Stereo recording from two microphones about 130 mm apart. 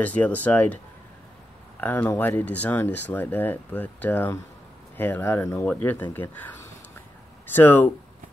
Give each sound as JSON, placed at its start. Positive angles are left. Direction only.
{"t": 0.0, "sound": "speech", "side_deg": 10}
{"t": 1.8, "sound": "speech", "side_deg": 15}
{"t": 7.5, "sound": "speech", "side_deg": 15}